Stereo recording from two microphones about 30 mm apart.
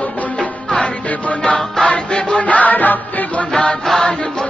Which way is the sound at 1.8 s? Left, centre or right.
Left.